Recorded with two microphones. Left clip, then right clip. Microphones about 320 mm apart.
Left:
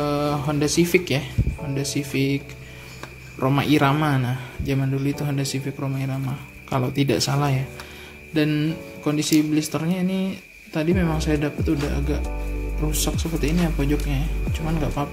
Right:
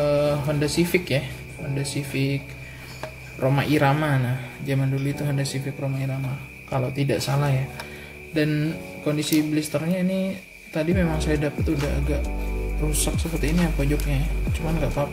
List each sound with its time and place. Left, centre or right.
0.0 s speech: centre
6.7 s speech: centre